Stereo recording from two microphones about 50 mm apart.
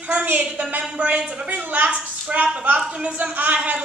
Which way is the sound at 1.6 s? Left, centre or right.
Right.